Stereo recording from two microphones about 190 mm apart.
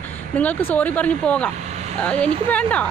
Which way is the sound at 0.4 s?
10° left (ahead or behind).